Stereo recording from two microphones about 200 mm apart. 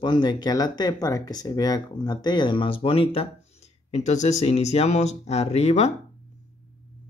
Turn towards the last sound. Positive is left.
turn(degrees=35)  # may be behind; listen again after turning